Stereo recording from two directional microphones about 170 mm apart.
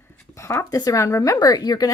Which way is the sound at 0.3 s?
15° left (ahead or behind).